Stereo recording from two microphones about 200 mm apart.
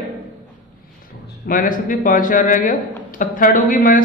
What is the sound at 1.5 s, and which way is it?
A man's voice, 45° left (ahead or behind).